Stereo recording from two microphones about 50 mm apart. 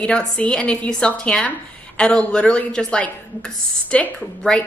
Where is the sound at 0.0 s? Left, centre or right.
Left.